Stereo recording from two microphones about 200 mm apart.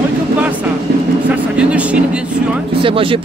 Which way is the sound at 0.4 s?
5° right (ahead or behind).